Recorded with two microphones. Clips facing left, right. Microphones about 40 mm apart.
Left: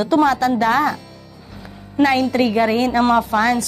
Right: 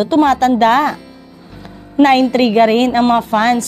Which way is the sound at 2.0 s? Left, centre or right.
Right.